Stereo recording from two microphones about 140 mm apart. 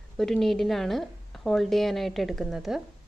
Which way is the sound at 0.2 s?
Centre (ahead or behind).